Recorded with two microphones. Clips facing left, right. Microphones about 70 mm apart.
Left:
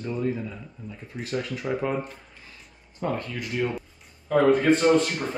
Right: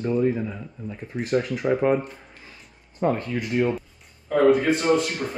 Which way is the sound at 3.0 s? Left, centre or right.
Right.